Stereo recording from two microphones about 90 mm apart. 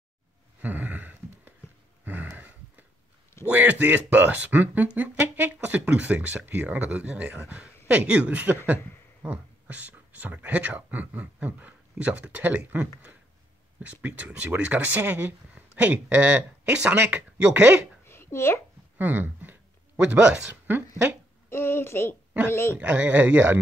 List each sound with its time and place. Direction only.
0.6 s a sound: 20° right (ahead or behind)
3.4 s speech: 15° right (ahead or behind)
18.0 s a sound: 25° left (ahead or behind)
18.9 s speech: 20° right (ahead or behind)
20.6 s speech: 20° right (ahead or behind)
21.5 s a woman's voice: 30° left (ahead or behind)
22.8 s speech: 15° right (ahead or behind)